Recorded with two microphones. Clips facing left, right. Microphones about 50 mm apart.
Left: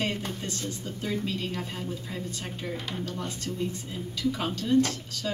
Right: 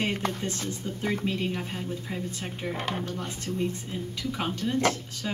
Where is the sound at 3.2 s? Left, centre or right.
Right.